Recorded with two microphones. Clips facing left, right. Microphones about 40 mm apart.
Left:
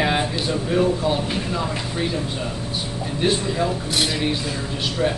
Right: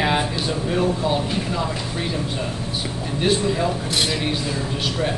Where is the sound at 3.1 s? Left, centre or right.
Centre.